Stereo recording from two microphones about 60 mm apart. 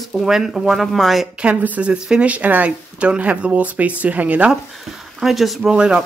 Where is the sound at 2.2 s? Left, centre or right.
Right.